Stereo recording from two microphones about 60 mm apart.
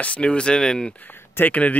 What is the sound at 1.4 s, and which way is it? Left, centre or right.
Speech, left.